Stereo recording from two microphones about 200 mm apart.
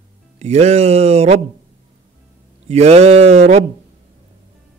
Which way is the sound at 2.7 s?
35° right (ahead or behind).